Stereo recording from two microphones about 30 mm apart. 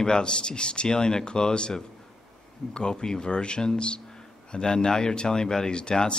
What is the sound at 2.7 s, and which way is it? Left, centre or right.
Speech, left.